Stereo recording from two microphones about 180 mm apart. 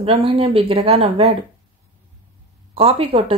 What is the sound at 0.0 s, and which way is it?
Speech, 30° right (ahead or behind).